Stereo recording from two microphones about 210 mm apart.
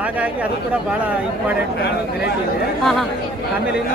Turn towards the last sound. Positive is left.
turn(degrees=0)  # may be behind; listen again after turning